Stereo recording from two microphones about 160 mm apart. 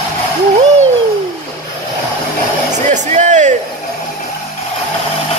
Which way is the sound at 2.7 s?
50° right (ahead or behind).